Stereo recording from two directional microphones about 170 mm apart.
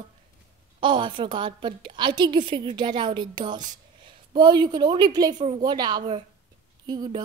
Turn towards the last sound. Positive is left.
turn(degrees=-25)  # may be behind; listen again after turning